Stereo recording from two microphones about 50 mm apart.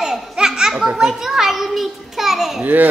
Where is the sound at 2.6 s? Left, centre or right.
Right.